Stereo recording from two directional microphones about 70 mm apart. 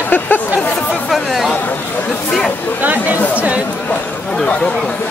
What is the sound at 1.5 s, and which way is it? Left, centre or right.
Chatter, left.